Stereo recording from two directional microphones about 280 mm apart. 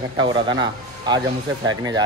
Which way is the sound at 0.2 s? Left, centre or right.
Centre.